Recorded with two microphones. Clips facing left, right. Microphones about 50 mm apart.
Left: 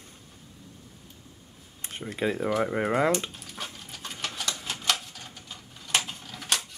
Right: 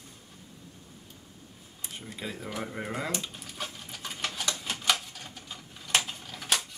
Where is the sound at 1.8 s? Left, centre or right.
Left.